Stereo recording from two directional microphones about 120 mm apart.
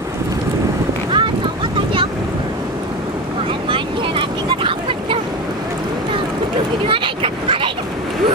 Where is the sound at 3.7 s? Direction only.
45° right (ahead or behind).